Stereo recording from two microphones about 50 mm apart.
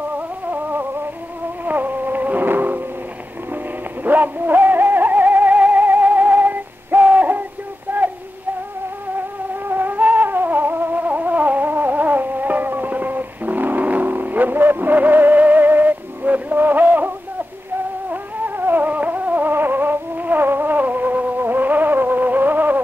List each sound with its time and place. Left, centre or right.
0.5 s music: right
1.6 s cat: right
4.0 s synthetic singing: right
9.7 s cat: right
18.1 s cat: right